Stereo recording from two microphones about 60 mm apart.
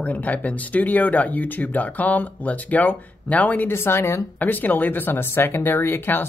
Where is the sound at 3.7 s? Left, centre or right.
Left.